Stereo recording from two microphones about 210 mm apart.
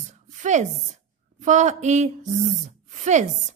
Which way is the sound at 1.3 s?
35° right (ahead or behind).